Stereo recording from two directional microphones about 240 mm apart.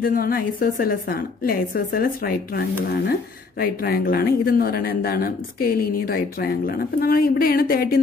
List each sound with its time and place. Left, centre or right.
0.0 s speech: left